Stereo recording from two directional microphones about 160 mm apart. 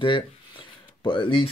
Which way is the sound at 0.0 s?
30° left (ahead or behind).